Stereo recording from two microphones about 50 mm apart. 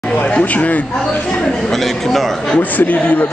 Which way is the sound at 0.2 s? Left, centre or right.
Left.